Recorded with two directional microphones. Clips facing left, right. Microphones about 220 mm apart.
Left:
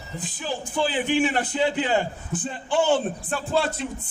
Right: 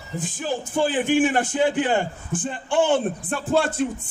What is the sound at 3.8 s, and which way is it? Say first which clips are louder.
Speech: right 7 dB; 50° right (ahead or behind).